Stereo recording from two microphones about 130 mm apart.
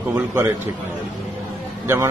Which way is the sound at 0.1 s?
20° right (ahead or behind).